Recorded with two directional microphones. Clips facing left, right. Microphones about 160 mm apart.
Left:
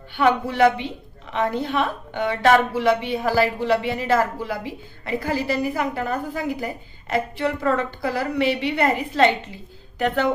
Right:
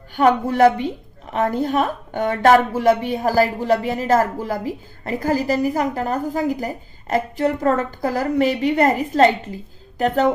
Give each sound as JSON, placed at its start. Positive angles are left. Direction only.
{"t": 0.1, "sound": "a woman's voice", "side_deg": -45}